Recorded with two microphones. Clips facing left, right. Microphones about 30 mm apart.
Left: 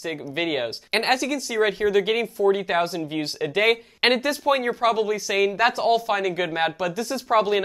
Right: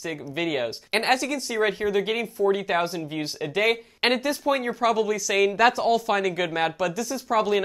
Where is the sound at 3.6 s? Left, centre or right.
Left.